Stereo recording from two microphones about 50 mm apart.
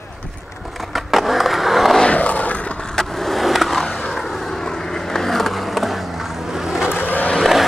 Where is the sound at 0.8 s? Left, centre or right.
Centre.